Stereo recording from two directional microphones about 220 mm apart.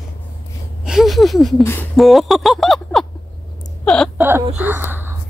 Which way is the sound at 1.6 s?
10° left (ahead or behind).